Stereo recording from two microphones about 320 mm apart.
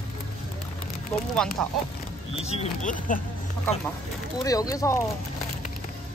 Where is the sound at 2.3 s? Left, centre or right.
Centre.